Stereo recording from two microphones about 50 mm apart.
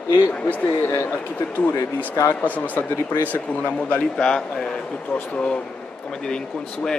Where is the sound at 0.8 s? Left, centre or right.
Left.